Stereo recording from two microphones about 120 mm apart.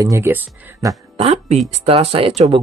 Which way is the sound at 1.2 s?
60° right (ahead or behind).